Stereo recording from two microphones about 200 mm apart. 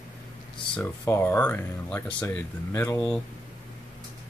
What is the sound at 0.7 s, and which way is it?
Speech, 10° left (ahead or behind).